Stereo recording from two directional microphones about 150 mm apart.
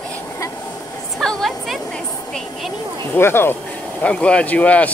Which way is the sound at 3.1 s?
15° left (ahead or behind).